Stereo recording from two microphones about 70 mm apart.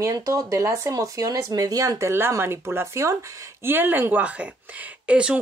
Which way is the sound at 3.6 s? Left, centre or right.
Right.